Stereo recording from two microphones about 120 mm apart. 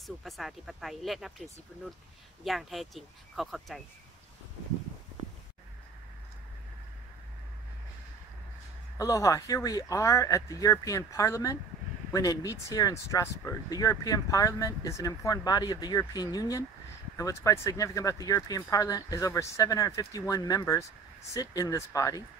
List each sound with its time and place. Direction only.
0.0 s speech: centre (ahead or behind)
8.9 s speech: 25° left (ahead or behind)